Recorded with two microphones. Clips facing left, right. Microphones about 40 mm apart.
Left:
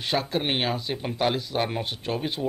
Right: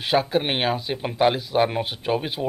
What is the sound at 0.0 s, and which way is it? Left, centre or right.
Speech, centre.